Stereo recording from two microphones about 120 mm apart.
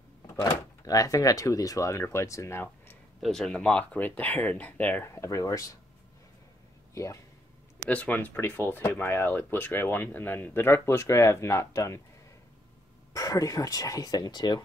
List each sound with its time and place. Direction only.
0.4 s speech: 30° left (ahead or behind)
3.2 s speech: 5° left (ahead or behind); by 5.7 s 30° left (ahead or behind)
6.9 s speech: 25° left (ahead or behind)
7.9 s speech: 15° left (ahead or behind)
13.1 s speech: 30° left (ahead or behind)